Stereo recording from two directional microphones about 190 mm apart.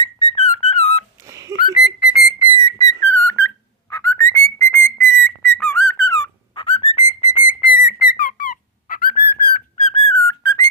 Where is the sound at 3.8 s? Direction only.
15° left (ahead or behind).